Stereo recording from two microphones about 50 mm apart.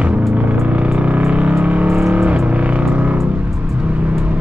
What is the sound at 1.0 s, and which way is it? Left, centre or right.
Music, right.